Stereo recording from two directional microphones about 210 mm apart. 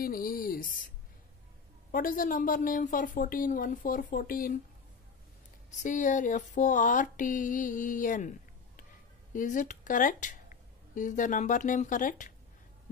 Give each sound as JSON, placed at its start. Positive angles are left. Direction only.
{"t": 0.0, "sound": "speech", "side_deg": 40}
{"t": 1.9, "sound": "speech", "side_deg": 40}
{"t": 5.7, "sound": "speech", "side_deg": 35}